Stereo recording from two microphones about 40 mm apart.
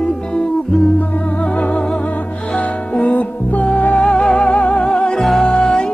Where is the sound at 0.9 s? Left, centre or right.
Left.